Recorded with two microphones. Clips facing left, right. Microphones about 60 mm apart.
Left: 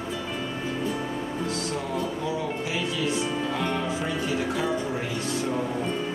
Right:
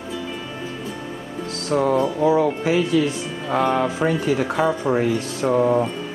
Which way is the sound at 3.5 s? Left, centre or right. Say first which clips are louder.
Right 8 dB; right.